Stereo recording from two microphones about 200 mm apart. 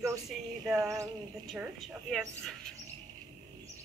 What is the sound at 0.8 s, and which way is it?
Speech, 15° right (ahead or behind).